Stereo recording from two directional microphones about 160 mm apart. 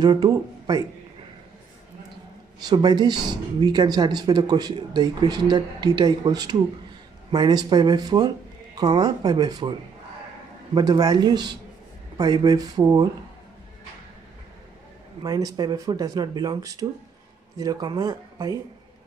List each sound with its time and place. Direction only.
0.0 s speech: 25° right (ahead or behind)
2.6 s speech: 25° right (ahead or behind)
15.2 s speech: 25° right (ahead or behind)